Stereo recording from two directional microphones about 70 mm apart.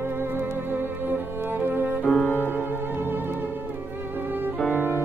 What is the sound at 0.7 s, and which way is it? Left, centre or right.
Music, right.